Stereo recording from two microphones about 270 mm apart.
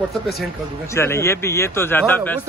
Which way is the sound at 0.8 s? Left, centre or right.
Centre.